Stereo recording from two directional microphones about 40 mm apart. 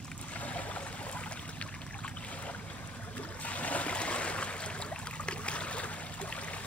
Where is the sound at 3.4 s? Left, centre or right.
Left.